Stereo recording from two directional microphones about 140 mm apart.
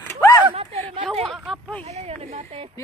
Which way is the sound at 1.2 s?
Centre (ahead or behind).